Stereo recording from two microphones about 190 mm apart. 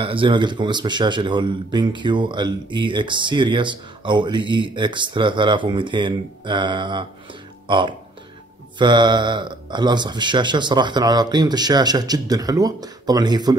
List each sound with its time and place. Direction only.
0.0 s speech: 25° right (ahead or behind)